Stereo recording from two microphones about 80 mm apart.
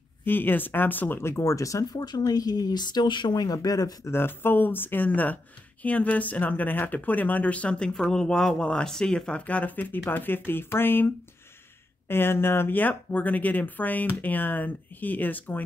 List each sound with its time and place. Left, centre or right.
0.2 s speech: left
4.1 s speech: left; by 9.4 s centre
9.5 s speech: centre
12.1 s speech: left